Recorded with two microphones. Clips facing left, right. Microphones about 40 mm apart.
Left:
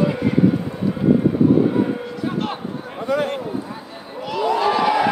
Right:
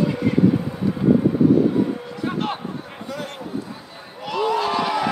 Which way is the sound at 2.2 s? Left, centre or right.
Centre.